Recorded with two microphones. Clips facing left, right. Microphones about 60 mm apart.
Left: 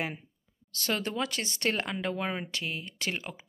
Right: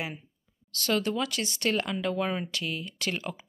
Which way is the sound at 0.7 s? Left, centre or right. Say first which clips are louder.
Right 3 dB; left.